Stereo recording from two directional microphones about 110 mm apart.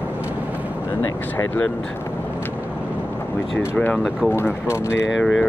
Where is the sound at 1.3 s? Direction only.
15° left (ahead or behind).